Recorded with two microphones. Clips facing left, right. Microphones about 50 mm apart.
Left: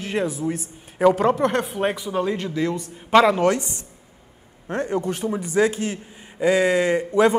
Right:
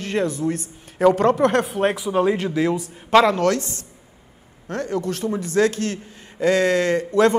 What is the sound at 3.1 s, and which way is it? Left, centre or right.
A man's voice, centre.